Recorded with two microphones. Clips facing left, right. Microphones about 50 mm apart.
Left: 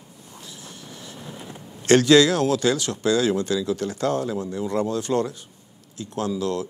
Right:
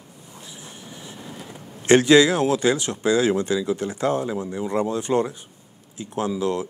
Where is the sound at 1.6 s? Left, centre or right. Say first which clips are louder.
Right 1 dB; centre.